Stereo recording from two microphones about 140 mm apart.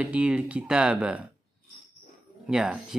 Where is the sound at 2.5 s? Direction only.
5° right (ahead or behind).